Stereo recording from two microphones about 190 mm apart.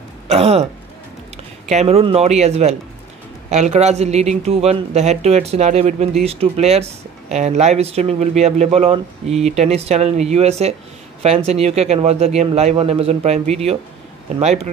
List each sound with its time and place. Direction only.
0.3 s speech: 30° right (ahead or behind)